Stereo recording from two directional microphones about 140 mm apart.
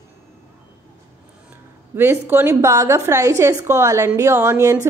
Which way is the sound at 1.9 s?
15° right (ahead or behind).